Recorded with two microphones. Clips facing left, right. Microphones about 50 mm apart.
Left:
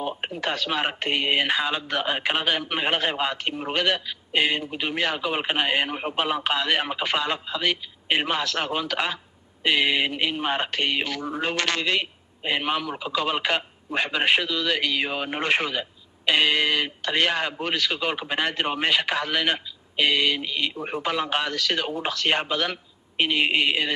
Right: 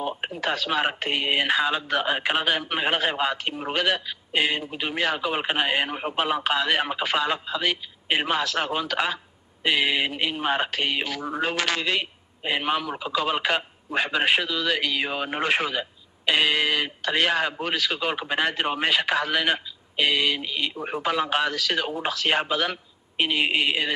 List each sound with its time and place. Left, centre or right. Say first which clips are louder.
0.0 s speech: even; centre